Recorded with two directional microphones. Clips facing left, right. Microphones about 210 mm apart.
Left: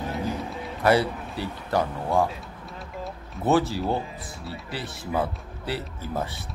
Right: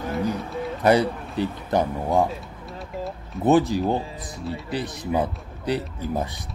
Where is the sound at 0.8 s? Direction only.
20° right (ahead or behind).